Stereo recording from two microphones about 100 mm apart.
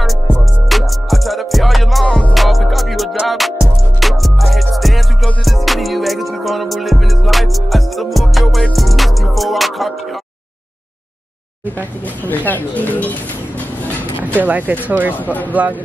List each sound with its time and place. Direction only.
0.7 s music: centre (ahead or behind)
12.3 s speech: 20° left (ahead or behind)
14.4 s speech: 15° right (ahead or behind)